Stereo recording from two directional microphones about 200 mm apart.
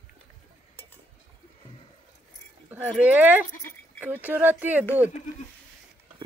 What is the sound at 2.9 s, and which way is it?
Speech, 5° right (ahead or behind).